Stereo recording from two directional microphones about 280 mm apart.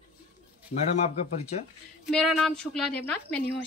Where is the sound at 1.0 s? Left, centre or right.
Left.